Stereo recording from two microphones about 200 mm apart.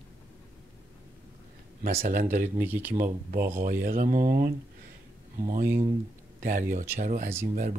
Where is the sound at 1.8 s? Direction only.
45° right (ahead or behind).